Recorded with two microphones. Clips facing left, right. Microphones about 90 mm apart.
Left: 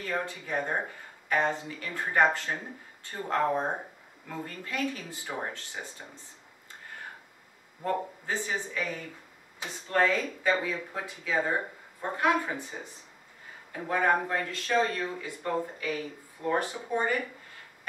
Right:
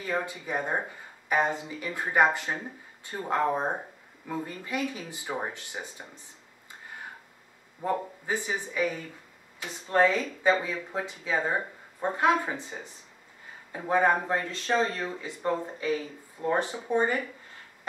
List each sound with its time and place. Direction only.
0.0 s speech: 15° right (ahead or behind)
7.8 s speech: 15° right (ahead or behind)
13.7 s speech: 20° right (ahead or behind)